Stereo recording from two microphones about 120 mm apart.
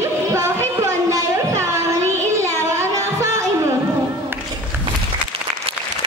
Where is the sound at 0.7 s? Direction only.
25° right (ahead or behind).